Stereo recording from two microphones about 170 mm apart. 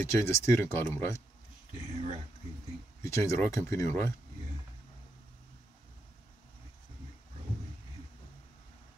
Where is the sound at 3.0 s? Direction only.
15° left (ahead or behind).